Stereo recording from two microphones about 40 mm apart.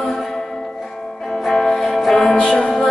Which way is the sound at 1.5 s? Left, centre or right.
Centre.